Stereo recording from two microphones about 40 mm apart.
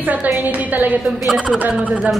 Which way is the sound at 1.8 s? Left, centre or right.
Right.